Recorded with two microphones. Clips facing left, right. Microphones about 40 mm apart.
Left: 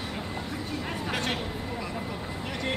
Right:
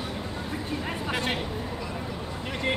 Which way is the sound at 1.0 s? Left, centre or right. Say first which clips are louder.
Right 2 dB; centre.